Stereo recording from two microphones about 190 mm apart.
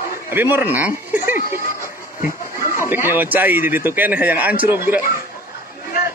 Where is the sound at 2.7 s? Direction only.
10° right (ahead or behind).